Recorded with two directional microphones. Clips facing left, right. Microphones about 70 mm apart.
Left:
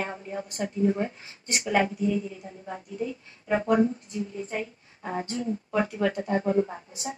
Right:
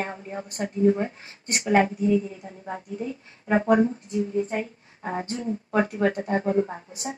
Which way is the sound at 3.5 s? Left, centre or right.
Right.